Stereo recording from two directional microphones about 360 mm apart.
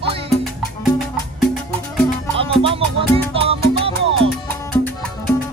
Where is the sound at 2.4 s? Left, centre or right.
Centre.